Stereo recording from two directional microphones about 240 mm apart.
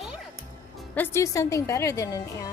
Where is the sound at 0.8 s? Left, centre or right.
Centre.